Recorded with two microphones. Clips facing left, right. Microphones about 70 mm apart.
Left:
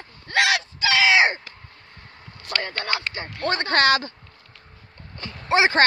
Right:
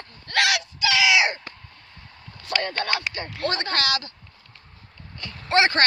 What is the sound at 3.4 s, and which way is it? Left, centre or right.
Speech, left.